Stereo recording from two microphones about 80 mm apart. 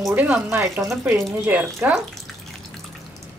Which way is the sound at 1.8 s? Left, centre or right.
Centre.